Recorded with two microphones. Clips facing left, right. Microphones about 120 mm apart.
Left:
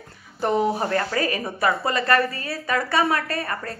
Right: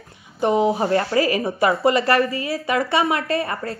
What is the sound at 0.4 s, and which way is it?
A woman's voice, 15° right (ahead or behind).